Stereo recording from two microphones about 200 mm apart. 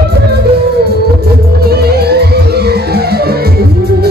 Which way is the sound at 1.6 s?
50° right (ahead or behind).